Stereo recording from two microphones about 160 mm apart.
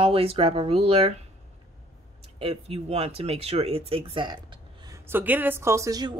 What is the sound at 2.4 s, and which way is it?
Speech, 40° right (ahead or behind).